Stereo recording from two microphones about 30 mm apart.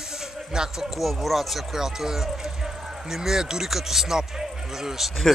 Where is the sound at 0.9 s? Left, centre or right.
Centre.